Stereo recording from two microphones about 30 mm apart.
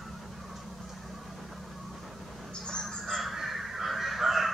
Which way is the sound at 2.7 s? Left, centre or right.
Left.